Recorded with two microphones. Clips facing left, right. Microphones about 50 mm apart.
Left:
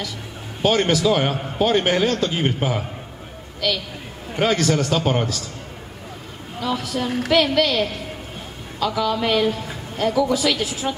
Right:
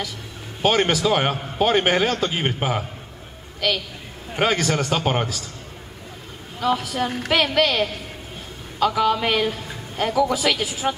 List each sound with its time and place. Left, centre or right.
0.6 s a man's voice: centre
4.4 s a man's voice: centre
6.6 s a man's voice: centre
8.8 s a man's voice: right